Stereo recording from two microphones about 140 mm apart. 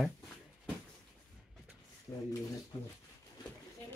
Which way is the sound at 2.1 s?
35° left (ahead or behind).